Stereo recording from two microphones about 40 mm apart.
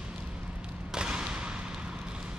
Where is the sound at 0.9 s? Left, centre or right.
Right.